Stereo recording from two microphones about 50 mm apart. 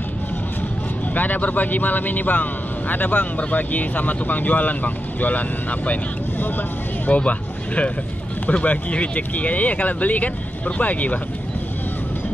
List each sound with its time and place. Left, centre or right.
1.1 s speech: left
7.1 s speech: left